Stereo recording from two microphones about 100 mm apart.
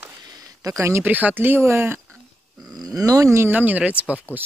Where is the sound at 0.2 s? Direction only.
40° right (ahead or behind).